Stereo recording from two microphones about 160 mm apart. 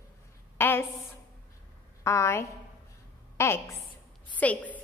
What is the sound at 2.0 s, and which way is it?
A woman's voice, 15° left (ahead or behind).